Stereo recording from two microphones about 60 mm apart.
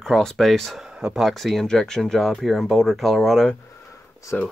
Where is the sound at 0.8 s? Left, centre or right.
Centre.